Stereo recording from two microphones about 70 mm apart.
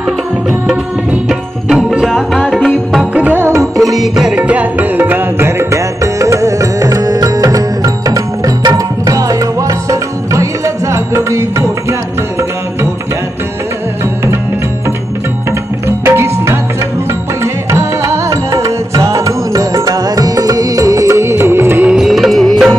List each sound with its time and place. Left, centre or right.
1.7 s music: centre
3.2 s music: right
3.4 s music: right
4.0 s music: centre
4.5 s music: right
16.1 s music: right
17.6 s music: right
21.9 s music: centre